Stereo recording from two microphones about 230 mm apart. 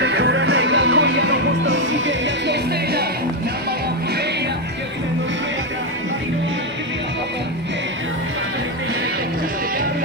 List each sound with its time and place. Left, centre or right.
0.0 s music: right